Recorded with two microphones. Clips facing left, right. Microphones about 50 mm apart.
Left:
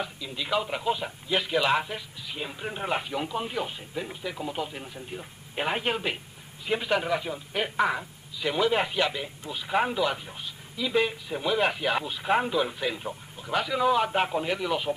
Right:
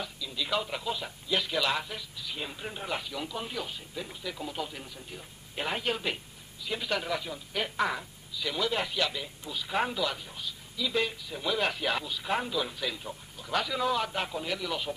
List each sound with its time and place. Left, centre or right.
0.0 s a sound: left
0.5 s speech: centre
2.8 s a man's voice: left